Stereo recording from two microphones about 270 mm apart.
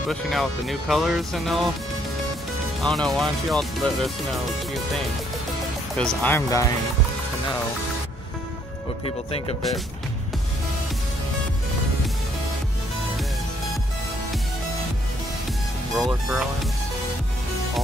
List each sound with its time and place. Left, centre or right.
0.1 s speech: centre
2.8 s speech: centre
9.0 s speech: centre
16.0 s speech: centre